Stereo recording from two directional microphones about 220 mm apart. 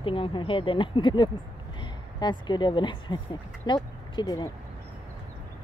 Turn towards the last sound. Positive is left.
turn(degrees=20)  # may be behind; listen again after turning